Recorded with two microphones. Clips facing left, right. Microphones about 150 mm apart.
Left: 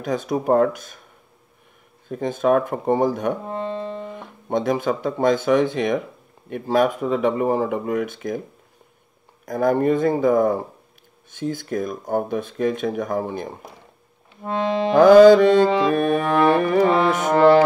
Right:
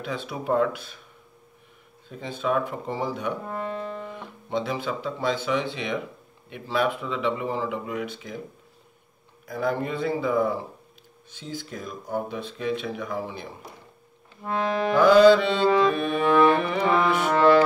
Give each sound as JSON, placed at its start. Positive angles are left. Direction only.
{"t": 0.0, "sound": "speech", "side_deg": 45}
{"t": 2.0, "sound": "speech", "side_deg": 50}
{"t": 3.4, "sound": "speech", "side_deg": 25}
{"t": 4.1, "sound": "speech", "side_deg": 50}
{"t": 9.5, "sound": "speech", "side_deg": 45}
{"t": 14.4, "sound": "speech", "side_deg": 20}
{"t": 15.0, "sound": "speech", "side_deg": 45}